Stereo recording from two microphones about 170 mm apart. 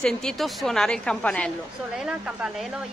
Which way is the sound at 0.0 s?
5° left (ahead or behind).